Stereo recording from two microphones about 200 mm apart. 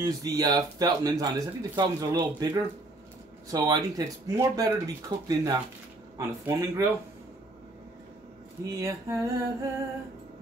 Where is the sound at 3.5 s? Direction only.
15° right (ahead or behind).